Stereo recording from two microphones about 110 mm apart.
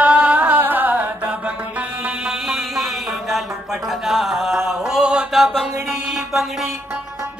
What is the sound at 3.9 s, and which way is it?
Mantra, 5° right (ahead or behind).